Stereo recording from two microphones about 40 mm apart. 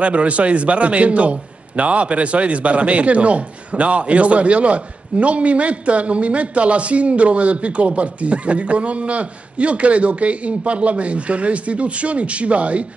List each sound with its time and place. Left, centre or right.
0.0 s a man's voice: right